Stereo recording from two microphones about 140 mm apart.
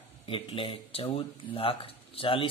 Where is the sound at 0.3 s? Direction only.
40° left (ahead or behind).